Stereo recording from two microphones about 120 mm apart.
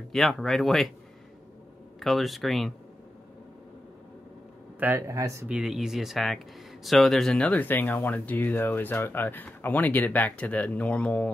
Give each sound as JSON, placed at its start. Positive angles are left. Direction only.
{"t": 0.1, "sound": "speech", "side_deg": 0}
{"t": 2.0, "sound": "speech", "side_deg": 0}
{"t": 4.7, "sound": "speech", "side_deg": -20}
{"t": 5.5, "sound": "speech", "side_deg": -5}